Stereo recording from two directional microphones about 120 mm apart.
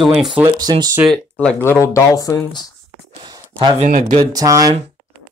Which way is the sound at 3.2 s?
40° right (ahead or behind).